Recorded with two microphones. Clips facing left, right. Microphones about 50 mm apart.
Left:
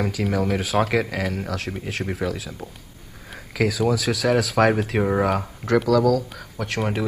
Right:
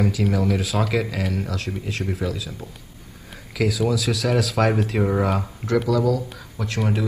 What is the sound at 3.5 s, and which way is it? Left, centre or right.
Speech, left.